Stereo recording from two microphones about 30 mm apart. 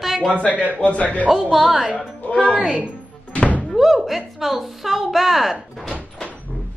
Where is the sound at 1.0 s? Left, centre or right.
Left.